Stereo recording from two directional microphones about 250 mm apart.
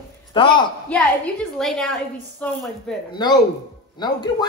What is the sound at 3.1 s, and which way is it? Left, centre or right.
Speech, centre.